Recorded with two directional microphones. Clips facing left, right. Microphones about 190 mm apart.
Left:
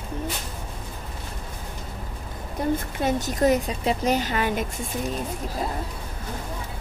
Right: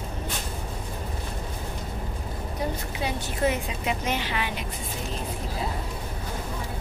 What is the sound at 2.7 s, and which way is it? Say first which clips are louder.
A woman's voice: left 6 dB; 45° left (ahead or behind).